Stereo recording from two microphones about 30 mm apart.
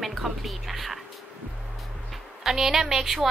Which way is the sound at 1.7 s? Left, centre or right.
Centre.